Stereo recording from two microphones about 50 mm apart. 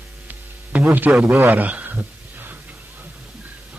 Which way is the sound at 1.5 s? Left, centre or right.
Right.